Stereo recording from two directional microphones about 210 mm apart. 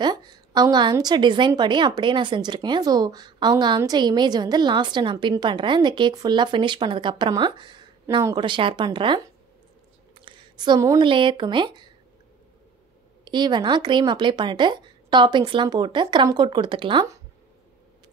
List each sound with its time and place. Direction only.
0.0 s a woman's voice: 20° right (ahead or behind)
13.2 s a woman's voice: 20° right (ahead or behind)